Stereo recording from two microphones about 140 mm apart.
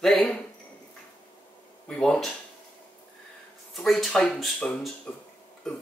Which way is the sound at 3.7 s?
Centre (ahead or behind).